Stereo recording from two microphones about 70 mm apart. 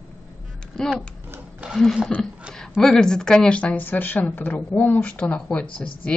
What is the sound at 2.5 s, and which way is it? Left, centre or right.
Speech, centre.